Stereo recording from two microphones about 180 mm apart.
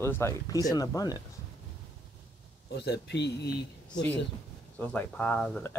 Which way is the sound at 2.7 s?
65° left (ahead or behind).